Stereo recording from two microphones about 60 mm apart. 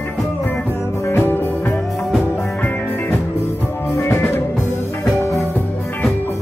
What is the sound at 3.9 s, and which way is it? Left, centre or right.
Music, left.